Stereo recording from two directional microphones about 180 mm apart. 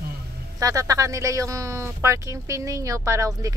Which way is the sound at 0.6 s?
20° right (ahead or behind).